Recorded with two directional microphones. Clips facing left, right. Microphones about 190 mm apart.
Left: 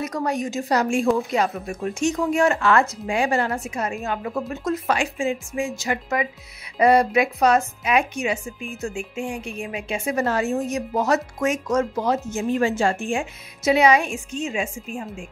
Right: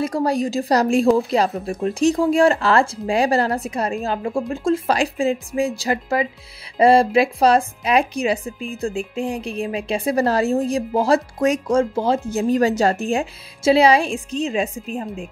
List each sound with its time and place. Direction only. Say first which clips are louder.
0.0 s a woman's voice: right 5 dB; 30° right (ahead or behind)